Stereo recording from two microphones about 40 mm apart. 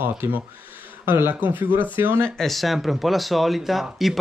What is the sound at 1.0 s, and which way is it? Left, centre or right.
Speech, right.